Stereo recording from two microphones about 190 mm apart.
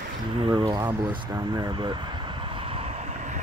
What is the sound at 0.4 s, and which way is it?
Speech, 20° right (ahead or behind).